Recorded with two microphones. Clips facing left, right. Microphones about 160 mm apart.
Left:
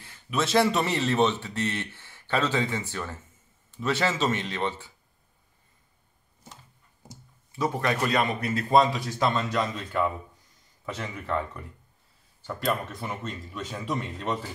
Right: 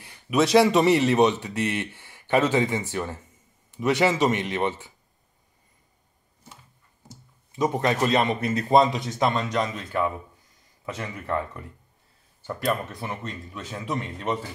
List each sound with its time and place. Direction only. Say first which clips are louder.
0.0 s a sound: right 7 dB; 15° right (ahead or behind)
0.8 s a man's voice: right 6 dB; 15° right (ahead or behind)
7.5 s a man's voice: right 3 dB; 20° right (ahead or behind)
9.6 s speech: right 1 dB; centre (ahead or behind)